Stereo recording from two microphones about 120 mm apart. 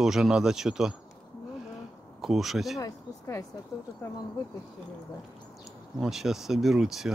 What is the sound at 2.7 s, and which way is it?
Speech, 25° left (ahead or behind).